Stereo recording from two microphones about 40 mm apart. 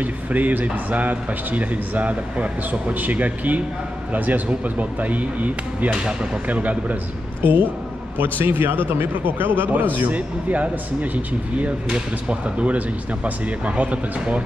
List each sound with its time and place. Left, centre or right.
0.0 s speech: right
8.2 s speech: right